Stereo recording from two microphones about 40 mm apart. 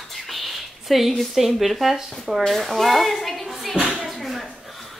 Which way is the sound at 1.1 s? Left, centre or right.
Centre.